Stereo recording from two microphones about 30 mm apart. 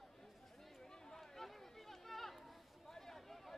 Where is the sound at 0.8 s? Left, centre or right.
Left.